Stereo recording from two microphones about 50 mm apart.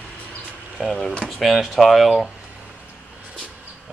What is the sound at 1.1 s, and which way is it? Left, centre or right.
Speech, centre.